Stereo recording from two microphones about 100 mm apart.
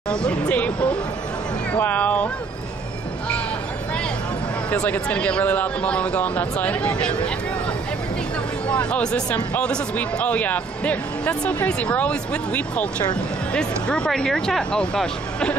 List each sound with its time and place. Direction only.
0.1 s hubbub: 10° left (ahead or behind)
1.7 s vehicle: 15° left (ahead or behind)
4.6 s speech: 15° left (ahead or behind)
8.9 s speech: 10° left (ahead or behind)